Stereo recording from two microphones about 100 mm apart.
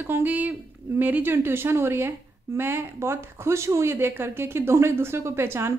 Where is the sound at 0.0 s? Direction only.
20° right (ahead or behind).